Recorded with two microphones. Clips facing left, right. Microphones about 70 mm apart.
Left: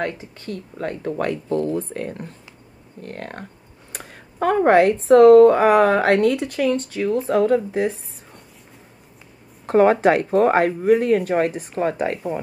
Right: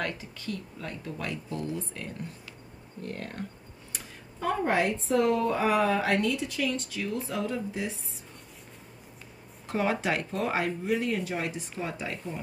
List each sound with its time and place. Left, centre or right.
0.0 s speech: left
9.7 s speech: left